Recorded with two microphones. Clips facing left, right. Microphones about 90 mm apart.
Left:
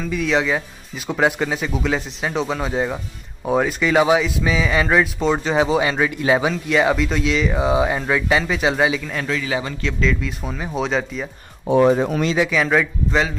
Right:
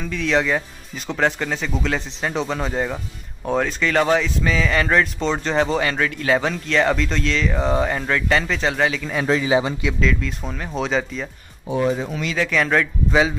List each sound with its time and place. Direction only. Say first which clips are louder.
0.1 s speech: even; 5° left (ahead or behind)
9.2 s a man's voice: right 8 dB; 25° right (ahead or behind)
9.8 s speech: even; 5° right (ahead or behind)
11.6 s speech: left 6 dB; 65° left (ahead or behind)
12.4 s speech: left 1 dB; 5° left (ahead or behind)